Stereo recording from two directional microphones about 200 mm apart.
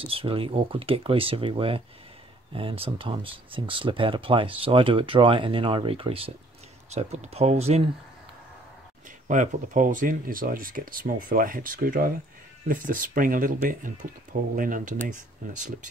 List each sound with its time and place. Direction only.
0.0 s speech: 25° right (ahead or behind)
9.3 s speech: 40° right (ahead or behind)